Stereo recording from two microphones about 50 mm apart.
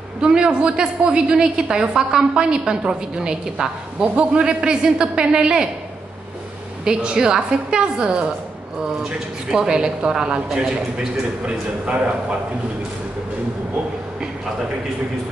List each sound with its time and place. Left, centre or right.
0.2 s a woman's voice: centre
6.8 s a woman's voice: centre
9.5 s a woman's voice: centre